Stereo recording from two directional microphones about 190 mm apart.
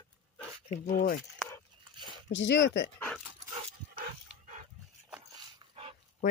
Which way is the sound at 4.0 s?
45° right (ahead or behind).